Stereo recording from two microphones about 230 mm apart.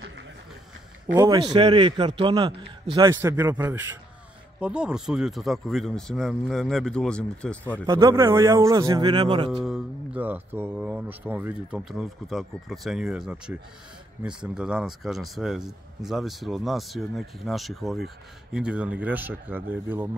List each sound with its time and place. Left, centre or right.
1.0 s a man's voice: centre
7.8 s a man's voice: centre
9.5 s speech: centre